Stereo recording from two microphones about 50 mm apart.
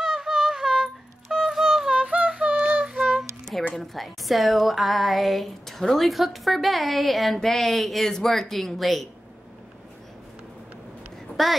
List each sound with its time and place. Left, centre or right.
0.0 s music: centre
2.0 s music: right; by 3.3 s centre
3.7 s speech: centre
11.4 s speech: centre